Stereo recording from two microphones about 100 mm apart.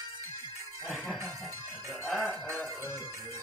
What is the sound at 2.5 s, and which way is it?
Music, 30° right (ahead or behind).